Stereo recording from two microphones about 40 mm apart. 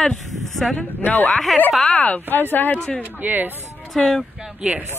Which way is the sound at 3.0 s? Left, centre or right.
Right.